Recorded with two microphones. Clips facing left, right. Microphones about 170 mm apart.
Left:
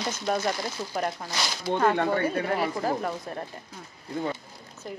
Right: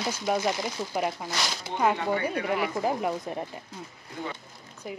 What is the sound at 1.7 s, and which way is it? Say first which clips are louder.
Speech: left 6 dB; 65° left (ahead or behind).